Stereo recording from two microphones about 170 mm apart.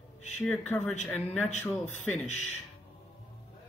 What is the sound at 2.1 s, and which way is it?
Speech, 40° left (ahead or behind).